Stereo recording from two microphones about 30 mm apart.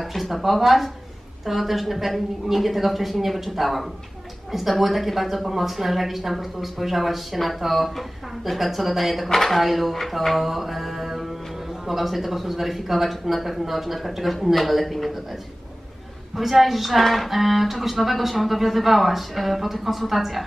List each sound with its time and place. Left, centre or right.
0.1 s a woman's voice: centre
9.6 s a woman's voice: centre
16.3 s a woman's voice: centre